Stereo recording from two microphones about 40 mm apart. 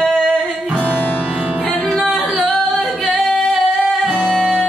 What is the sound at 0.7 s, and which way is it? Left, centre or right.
Music, left.